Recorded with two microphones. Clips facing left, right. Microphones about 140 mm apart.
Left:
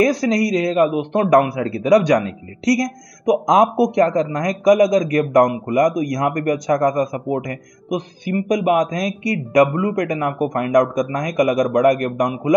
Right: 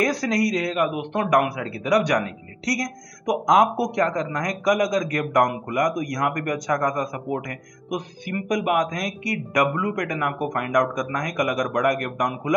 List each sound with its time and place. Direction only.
0.0 s a man's voice: 25° left (ahead or behind)